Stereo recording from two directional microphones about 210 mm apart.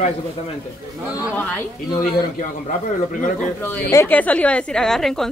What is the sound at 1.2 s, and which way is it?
Speech, 10° left (ahead or behind).